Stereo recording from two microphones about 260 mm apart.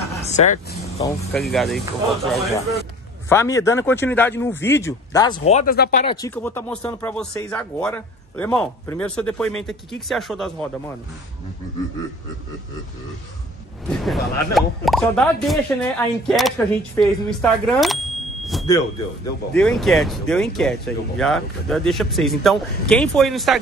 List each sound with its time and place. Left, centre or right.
0.4 s speech: left
1.4 s speech: centre
3.3 s speech: centre; by 6.0 s left
6.0 s speech: centre
13.8 s speech: centre
18.4 s a sound: centre
18.7 s speech: centre
19.6 s speech: centre